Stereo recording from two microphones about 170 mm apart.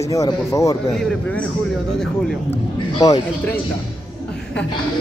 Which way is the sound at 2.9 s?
20° left (ahead or behind).